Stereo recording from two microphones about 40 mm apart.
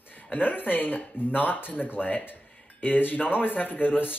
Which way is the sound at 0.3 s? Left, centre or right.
Left.